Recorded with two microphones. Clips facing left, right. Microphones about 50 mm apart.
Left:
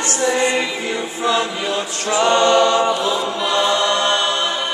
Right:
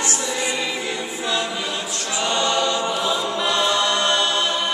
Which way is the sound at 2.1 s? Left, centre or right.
Left.